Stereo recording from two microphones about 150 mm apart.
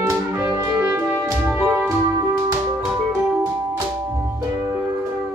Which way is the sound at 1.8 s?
20° right (ahead or behind).